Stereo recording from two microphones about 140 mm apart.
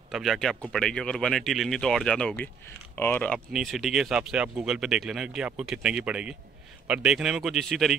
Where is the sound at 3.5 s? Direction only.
Centre (ahead or behind).